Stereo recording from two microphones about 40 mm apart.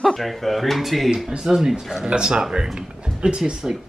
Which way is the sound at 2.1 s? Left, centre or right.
Right.